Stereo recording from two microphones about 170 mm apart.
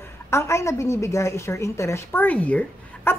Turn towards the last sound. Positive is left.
turn(degrees=10)  # may be behind; listen again after turning